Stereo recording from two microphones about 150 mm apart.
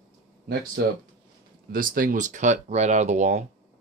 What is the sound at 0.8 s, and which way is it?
Speech, 90° right.